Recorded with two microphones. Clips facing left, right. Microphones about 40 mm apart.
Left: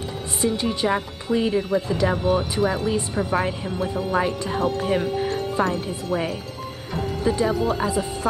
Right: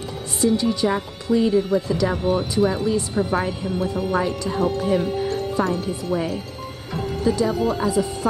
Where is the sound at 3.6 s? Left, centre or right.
Left.